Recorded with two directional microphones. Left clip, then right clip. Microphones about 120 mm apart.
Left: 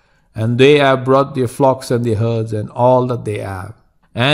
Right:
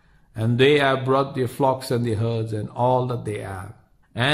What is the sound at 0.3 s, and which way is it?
A man's voice, 40° left (ahead or behind).